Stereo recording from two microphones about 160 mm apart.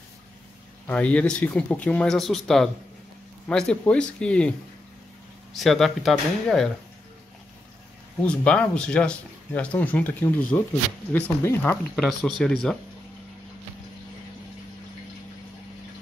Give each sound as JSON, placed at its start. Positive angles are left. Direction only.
{"t": 0.8, "sound": "speech", "side_deg": 10}
{"t": 8.2, "sound": "speech", "side_deg": 10}
{"t": 11.9, "sound": "speech", "side_deg": 0}